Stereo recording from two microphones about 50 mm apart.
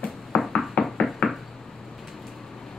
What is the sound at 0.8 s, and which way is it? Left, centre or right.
Knock, left.